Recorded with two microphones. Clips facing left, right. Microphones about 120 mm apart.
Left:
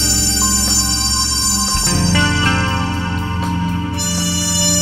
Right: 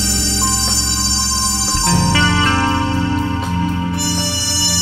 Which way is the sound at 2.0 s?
15° right (ahead or behind).